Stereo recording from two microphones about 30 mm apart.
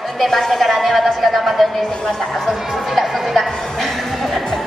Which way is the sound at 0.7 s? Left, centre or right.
Centre.